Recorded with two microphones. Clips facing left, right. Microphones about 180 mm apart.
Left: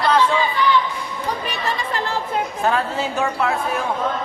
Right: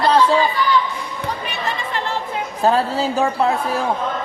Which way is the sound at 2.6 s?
35° right (ahead or behind).